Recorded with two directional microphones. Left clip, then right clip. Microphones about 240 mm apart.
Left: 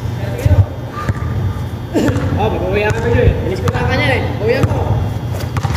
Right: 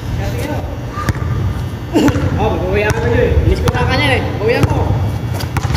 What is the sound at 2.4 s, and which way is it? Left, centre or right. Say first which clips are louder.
Boat: even; centre.